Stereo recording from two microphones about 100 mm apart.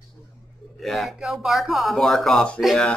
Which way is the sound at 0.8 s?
Centre (ahead or behind).